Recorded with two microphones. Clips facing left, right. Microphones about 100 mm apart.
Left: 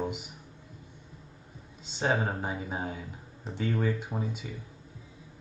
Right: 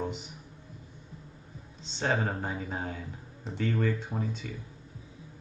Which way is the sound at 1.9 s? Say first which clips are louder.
Left 1 dB; 5° left (ahead or behind).